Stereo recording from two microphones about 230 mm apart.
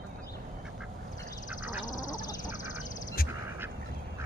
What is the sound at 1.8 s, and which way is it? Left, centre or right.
Quack, left.